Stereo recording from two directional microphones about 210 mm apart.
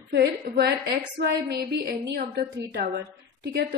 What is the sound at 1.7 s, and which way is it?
A woman's voice, 50° right (ahead or behind).